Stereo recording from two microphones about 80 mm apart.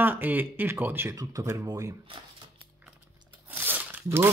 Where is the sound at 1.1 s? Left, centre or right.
Right.